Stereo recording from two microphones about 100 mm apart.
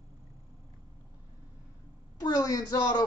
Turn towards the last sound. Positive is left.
turn(degrees=40)  # may be behind; listen again after turning